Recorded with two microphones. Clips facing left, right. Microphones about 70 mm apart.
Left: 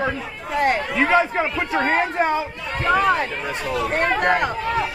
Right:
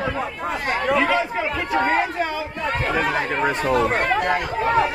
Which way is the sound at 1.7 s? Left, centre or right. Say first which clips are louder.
Right 2 dB; left.